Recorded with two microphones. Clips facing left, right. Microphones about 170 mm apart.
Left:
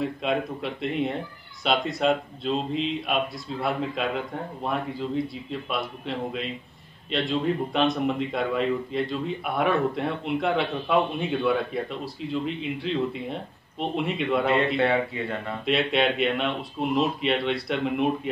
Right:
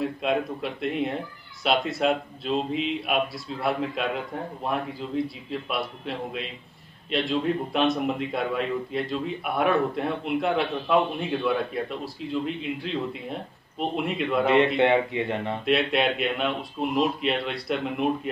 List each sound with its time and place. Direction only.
0.0 s a man's voice: centre (ahead or behind)
14.8 s speech: 20° right (ahead or behind)
15.6 s a man's voice: centre (ahead or behind)